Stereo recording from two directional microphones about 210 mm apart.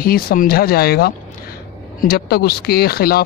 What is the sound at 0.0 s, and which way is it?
Speech, 45° left (ahead or behind).